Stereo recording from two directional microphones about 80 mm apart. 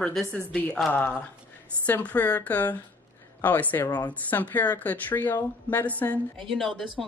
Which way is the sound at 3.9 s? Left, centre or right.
Left.